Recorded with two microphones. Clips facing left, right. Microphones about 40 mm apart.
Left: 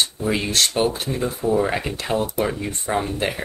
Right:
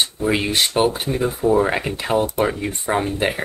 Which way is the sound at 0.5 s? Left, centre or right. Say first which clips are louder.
Right 2 dB; right.